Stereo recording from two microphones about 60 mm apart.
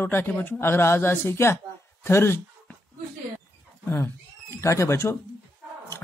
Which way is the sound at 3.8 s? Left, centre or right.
Left.